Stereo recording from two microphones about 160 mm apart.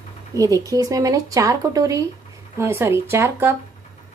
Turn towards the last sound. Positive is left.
turn(degrees=-15)  # may be behind; listen again after turning